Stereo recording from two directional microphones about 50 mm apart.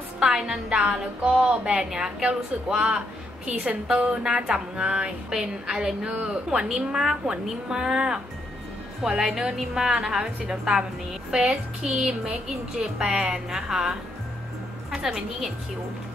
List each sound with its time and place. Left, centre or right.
0.2 s a woman's voice: centre